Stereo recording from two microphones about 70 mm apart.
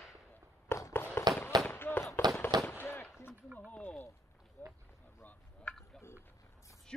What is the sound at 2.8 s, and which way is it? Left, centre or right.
Gunshot, left.